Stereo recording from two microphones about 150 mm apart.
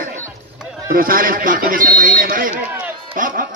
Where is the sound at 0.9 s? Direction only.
70° right (ahead or behind).